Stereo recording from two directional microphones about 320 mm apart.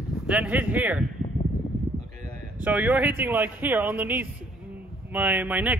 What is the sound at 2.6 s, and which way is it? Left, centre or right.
A man's voice, centre.